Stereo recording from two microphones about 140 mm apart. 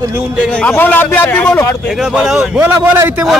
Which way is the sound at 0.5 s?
10° left (ahead or behind).